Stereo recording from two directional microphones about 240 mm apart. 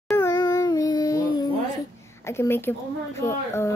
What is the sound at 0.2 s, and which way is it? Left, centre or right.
Dog, centre.